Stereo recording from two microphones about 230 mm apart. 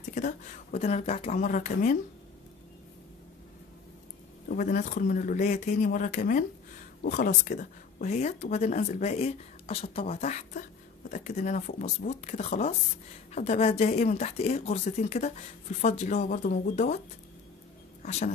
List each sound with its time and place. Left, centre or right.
0.1 s a woman's voice: left
4.5 s speech: left